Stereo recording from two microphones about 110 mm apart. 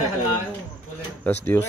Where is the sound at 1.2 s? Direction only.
20° left (ahead or behind).